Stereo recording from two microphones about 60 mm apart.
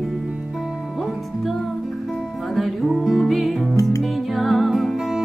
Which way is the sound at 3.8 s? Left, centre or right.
Left.